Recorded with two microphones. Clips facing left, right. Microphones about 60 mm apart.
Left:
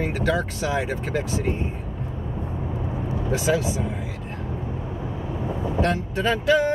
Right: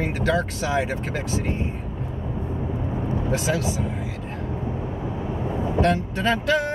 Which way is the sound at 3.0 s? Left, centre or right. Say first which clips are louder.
Left 1 dB; centre.